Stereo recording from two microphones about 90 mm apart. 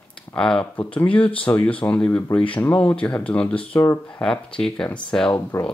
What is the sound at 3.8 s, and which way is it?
Speech, 30° left (ahead or behind).